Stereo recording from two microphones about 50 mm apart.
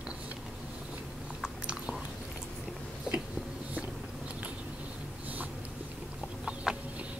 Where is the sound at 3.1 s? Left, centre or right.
Centre.